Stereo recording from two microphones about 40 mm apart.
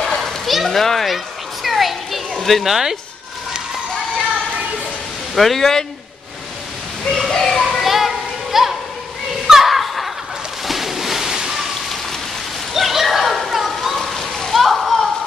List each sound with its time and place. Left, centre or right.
0.2 s children playing: centre
2.7 s speech: centre
5.3 s speech: centre
7.1 s speech: centre
7.8 s a sound: centre